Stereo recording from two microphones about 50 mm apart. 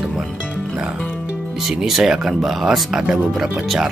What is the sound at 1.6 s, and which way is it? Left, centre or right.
Speech, centre.